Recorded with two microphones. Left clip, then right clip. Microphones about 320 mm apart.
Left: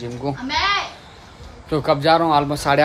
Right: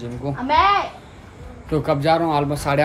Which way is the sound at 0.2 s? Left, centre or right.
Centre.